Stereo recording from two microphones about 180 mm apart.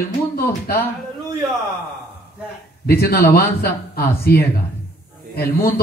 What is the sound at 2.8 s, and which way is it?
Speech, 60° left (ahead or behind).